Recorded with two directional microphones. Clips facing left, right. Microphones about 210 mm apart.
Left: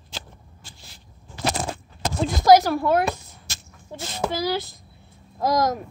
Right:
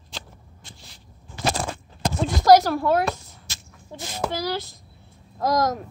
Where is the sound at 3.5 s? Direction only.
45° left (ahead or behind).